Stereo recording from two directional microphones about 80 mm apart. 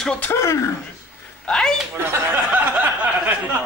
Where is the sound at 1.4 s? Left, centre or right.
Centre.